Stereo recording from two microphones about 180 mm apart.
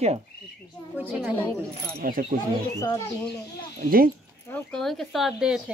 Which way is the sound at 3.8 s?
55° right (ahead or behind).